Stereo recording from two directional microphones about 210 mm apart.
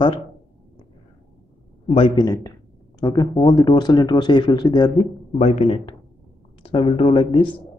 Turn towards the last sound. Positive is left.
turn(degrees=20)  # may be behind; listen again after turning